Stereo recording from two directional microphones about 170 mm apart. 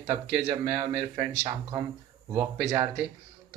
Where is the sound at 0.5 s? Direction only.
15° right (ahead or behind).